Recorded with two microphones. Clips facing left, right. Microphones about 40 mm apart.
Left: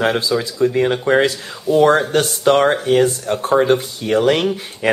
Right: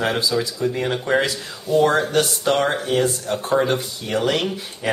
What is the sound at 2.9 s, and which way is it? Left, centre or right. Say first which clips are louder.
Speech: left 5 dB; left.